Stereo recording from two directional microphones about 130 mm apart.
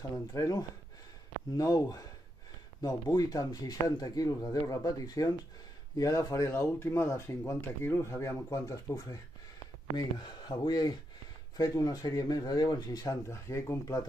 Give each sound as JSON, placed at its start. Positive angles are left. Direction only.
{"t": 0.1, "sound": "speech", "side_deg": 25}